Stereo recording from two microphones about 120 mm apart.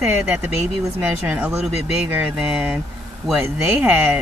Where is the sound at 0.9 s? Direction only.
15° right (ahead or behind).